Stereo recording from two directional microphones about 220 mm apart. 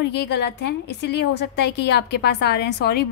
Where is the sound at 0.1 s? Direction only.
50° left (ahead or behind).